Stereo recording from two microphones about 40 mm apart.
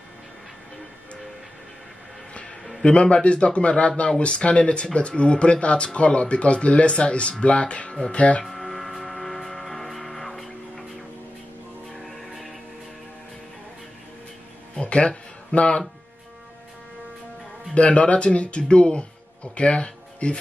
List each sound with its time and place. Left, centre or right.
2.8 s speech: left
8.5 s music: centre
11.9 s music: centre
14.8 s speech: left
17.7 s speech: left